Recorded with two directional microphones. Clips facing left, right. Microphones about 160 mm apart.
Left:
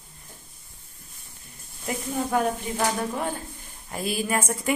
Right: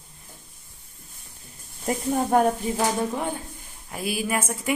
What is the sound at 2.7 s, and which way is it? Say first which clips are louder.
Speech: right 2 dB; 15° right (ahead or behind).